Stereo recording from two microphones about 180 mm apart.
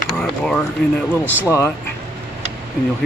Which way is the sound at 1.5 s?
15° left (ahead or behind).